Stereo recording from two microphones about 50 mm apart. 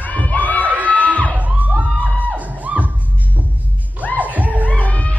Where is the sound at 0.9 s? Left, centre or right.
Left.